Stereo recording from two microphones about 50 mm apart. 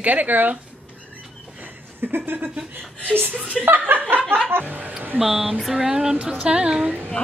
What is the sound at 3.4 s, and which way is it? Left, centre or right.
Speech, right.